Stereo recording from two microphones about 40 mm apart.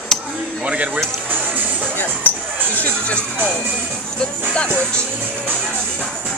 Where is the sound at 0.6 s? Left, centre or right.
Right.